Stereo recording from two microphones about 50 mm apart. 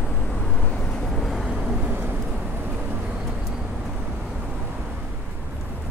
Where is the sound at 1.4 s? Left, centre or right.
Centre.